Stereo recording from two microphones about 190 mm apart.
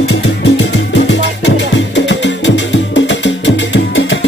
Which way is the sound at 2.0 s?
70° left (ahead or behind).